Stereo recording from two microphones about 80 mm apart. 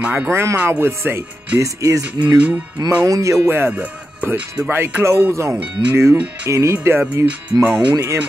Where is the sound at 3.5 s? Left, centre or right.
Right.